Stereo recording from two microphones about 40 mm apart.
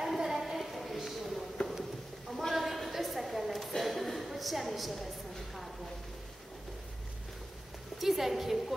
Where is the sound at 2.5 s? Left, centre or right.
Centre.